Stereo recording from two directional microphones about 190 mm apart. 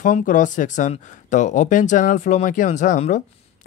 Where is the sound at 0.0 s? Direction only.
45° left (ahead or behind).